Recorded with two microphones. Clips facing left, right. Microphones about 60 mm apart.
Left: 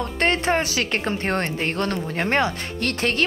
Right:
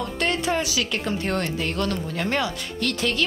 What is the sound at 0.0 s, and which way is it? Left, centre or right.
Speech, left.